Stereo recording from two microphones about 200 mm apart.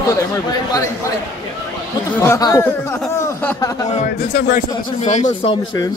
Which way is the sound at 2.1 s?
15° left (ahead or behind).